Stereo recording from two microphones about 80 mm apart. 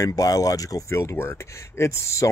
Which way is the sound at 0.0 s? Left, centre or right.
Left.